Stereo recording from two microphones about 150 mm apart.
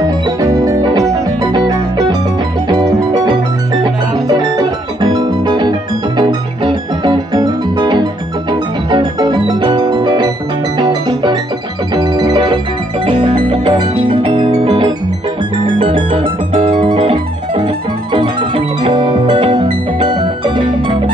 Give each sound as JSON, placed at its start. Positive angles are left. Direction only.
{"t": 0.0, "sound": "music", "side_deg": -25}